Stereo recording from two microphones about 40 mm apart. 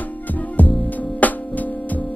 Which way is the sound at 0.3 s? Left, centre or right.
Left.